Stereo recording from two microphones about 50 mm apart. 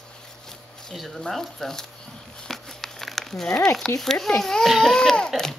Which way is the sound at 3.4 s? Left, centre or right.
Left.